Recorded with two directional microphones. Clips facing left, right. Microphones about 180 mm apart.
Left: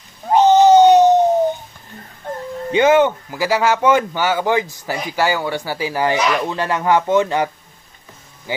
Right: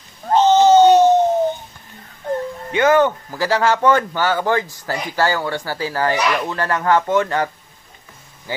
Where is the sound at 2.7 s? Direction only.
20° left (ahead or behind).